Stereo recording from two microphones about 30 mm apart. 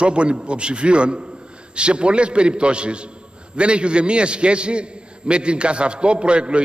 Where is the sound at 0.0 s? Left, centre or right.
Right.